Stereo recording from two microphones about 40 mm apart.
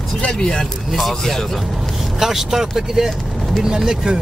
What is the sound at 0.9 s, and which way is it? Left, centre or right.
Speech, centre.